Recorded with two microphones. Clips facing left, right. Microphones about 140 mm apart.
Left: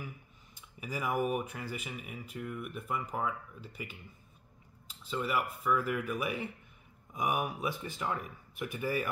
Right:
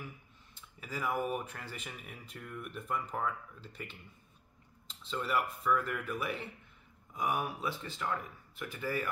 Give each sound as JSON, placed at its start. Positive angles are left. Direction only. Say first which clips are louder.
{"t": 0.6, "sound": "speech", "louder": "left 2 dB", "side_deg": 15}